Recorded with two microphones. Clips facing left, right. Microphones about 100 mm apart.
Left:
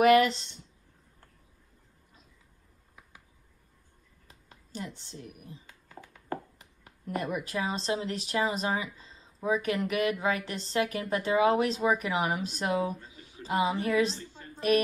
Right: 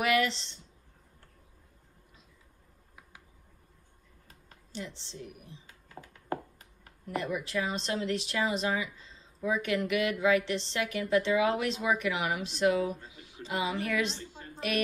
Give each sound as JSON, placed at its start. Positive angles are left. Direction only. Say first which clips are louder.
{"t": 0.0, "sound": "a sound", "louder": "left 7 dB", "side_deg": 45}
{"t": 4.7, "sound": "a woman's voice", "louder": "left 1 dB", "side_deg": 45}
{"t": 7.2, "sound": "a woman's voice", "louder": "even", "side_deg": 50}
{"t": 7.5, "sound": "a woman's voice", "louder": "left 2 dB", "side_deg": 35}